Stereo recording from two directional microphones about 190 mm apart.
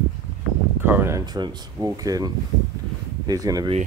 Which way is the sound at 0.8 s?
10° right (ahead or behind).